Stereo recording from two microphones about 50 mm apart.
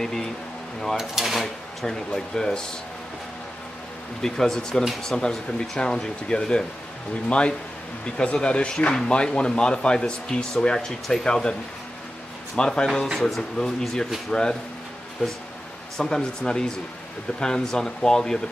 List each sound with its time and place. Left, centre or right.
0.0 s speech: centre
0.9 s a sound: centre
1.9 s speech: centre
4.2 s speech: centre
12.5 s speech: centre
16.0 s speech: centre